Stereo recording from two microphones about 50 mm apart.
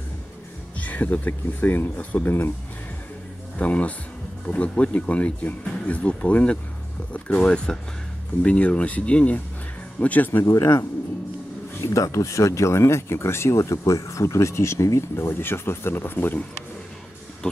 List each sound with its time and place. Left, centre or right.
0.7 s speech: left
3.5 s speech: left
8.4 s speech: left
10.4 s speech: left
12.1 s speech: left